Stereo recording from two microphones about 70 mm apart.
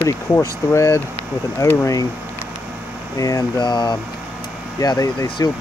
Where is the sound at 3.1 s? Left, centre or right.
Left.